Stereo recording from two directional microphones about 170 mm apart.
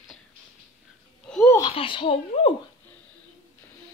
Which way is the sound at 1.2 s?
5° left (ahead or behind).